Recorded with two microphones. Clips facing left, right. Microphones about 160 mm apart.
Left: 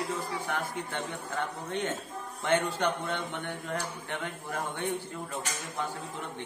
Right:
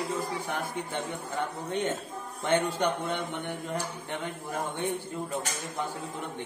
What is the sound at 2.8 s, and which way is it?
Mantra, 15° right (ahead or behind).